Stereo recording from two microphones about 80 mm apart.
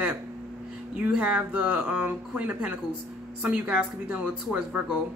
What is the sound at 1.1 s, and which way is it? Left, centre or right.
Speech, centre.